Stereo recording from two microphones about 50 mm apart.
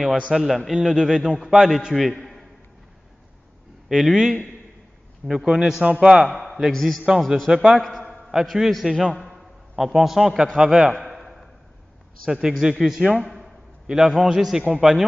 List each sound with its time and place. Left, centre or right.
0.3 s a man's voice: centre
3.9 s a man's voice: centre
5.3 s a man's voice: centre
6.2 s a man's voice: centre
7.4 s a man's voice: centre
7.7 s a man's voice: centre
9.2 s a sound: centre
9.9 s a man's voice: centre
11.0 s a sound: centre
12.3 s a man's voice: centre